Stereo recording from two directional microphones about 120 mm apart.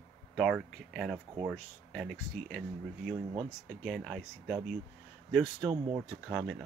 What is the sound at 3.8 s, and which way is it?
Speech, centre (ahead or behind).